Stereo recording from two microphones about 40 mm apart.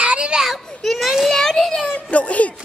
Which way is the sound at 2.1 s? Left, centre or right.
Left.